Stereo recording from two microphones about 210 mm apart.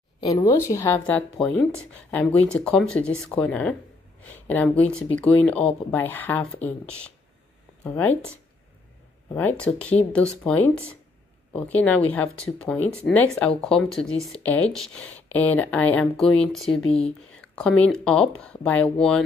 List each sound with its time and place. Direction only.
0.2 s speech: 20° left (ahead or behind)
9.3 s speech: 10° left (ahead or behind)